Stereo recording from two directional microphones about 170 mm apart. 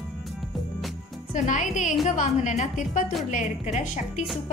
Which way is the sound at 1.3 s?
45° left (ahead or behind).